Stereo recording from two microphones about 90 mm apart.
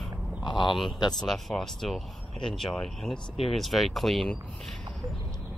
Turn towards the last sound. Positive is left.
turn(degrees=0)  # may be behind; listen again after turning